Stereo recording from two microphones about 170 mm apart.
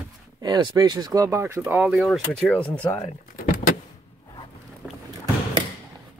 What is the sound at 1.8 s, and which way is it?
Speech, centre (ahead or behind).